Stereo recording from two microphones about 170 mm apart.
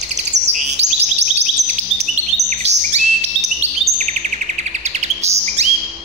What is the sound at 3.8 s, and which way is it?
Chirp, 45° right (ahead or behind).